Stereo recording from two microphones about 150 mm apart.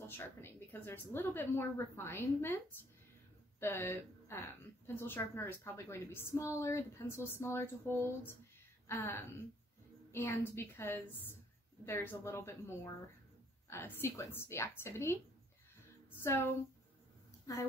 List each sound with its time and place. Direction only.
0.4 s a woman's voice: 15° left (ahead or behind)
16.2 s a woman's voice: 15° left (ahead or behind)